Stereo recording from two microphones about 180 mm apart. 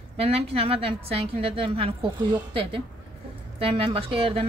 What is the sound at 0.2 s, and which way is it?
Speech, 35° right (ahead or behind).